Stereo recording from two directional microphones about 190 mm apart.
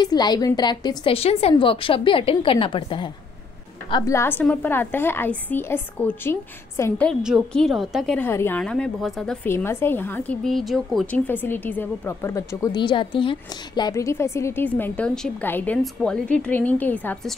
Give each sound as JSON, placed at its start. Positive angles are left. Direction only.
{"t": 0.0, "sound": "a woman's voice", "side_deg": 20}
{"t": 8.2, "sound": "a woman's voice", "side_deg": 10}